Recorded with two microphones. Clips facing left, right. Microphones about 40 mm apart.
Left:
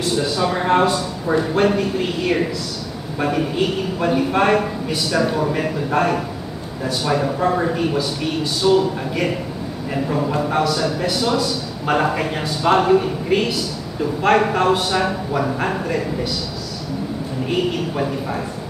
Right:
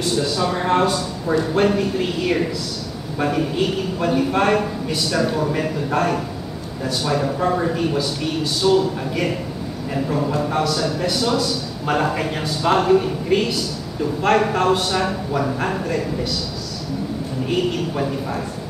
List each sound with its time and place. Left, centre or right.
0.0 s a man's voice: centre
1.5 s a woman's voice: centre
17.5 s a man's voice: centre